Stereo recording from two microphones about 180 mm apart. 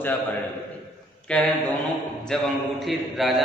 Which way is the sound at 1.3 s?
5° left (ahead or behind).